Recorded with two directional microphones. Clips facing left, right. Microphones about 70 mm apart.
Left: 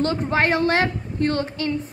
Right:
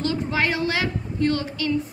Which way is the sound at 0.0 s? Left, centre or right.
Left.